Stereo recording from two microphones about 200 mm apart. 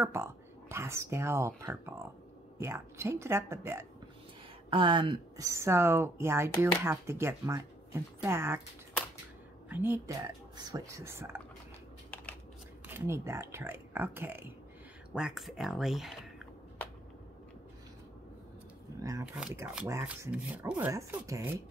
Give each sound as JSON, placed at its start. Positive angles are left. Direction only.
{"t": 0.0, "sound": "speech", "side_deg": -15}
{"t": 4.6, "sound": "speech", "side_deg": -25}
{"t": 9.7, "sound": "speech", "side_deg": -10}
{"t": 12.8, "sound": "speech", "side_deg": -10}
{"t": 18.9, "sound": "speech", "side_deg": -15}
{"t": 19.2, "sound": "speech", "side_deg": -5}